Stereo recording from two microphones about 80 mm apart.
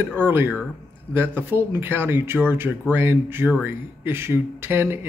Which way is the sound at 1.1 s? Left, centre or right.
Right.